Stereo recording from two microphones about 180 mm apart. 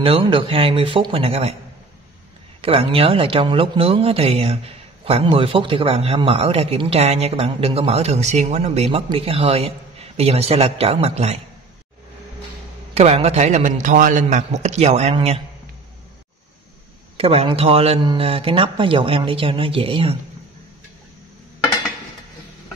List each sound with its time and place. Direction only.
0.0 s speech: 30° right (ahead or behind)
2.6 s speech: 30° right (ahead or behind)
12.9 s speech: 35° right (ahead or behind)
17.2 s speech: 35° right (ahead or behind)